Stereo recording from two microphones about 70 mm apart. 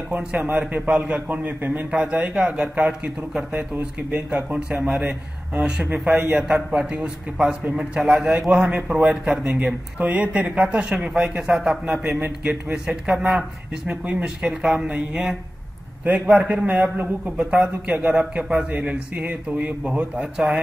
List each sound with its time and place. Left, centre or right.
0.1 s a man's voice: right
4.3 s a man's voice: centre
6.1 s a man's voice: right
6.4 s a man's voice: centre
12.0 s a man's voice: right
12.7 s a man's voice: centre